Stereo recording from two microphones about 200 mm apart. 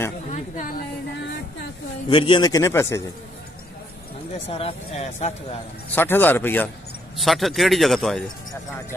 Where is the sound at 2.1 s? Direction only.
25° left (ahead or behind).